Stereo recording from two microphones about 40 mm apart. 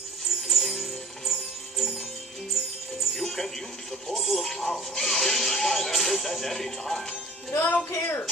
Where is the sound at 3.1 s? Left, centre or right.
Centre.